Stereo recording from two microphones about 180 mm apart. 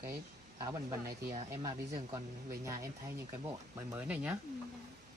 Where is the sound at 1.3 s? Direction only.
25° right (ahead or behind).